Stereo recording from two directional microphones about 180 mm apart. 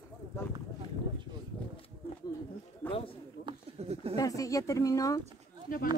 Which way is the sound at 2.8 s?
30° left (ahead or behind).